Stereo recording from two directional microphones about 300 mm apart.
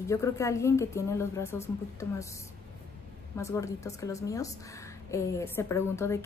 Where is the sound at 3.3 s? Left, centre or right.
Centre.